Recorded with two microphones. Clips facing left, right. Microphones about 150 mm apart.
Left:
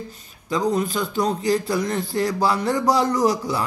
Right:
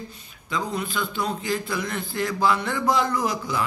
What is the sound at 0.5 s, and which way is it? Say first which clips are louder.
A man's voice: left 7 dB; 40° left (ahead or behind).